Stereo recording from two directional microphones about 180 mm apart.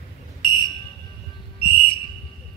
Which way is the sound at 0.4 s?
25° left (ahead or behind).